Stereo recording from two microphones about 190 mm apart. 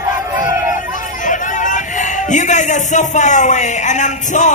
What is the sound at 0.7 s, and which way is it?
Speech, 40° left (ahead or behind).